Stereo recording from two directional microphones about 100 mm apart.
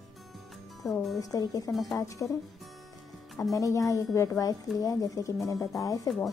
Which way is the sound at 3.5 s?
35° left (ahead or behind).